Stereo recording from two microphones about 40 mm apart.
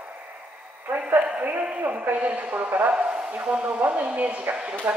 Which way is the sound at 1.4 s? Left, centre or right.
Right.